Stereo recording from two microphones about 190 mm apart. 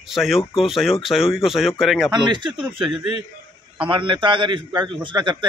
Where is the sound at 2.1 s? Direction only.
25° right (ahead or behind).